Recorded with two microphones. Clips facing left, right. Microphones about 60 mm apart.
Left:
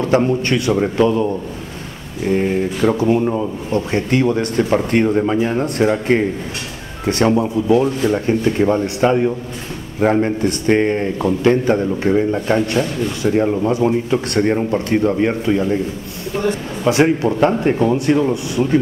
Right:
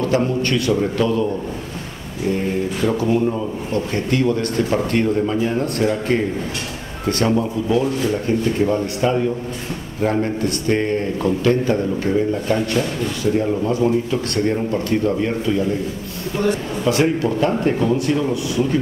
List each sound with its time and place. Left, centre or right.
0.2 s a man's voice: left
2.2 s speech: left
2.9 s a man's voice: left